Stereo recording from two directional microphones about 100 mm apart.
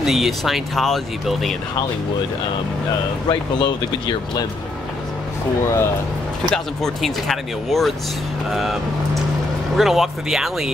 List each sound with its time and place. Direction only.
0.0 s speech: centre (ahead or behind)
3.3 s speech: 50° left (ahead or behind)
6.5 s speech: 5° left (ahead or behind)
9.8 s speech: centre (ahead or behind)